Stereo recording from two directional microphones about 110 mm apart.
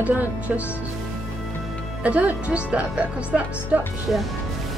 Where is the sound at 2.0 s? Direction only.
15° right (ahead or behind).